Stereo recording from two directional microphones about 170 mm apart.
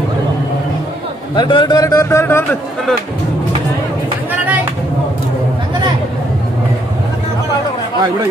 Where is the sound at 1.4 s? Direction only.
30° left (ahead or behind).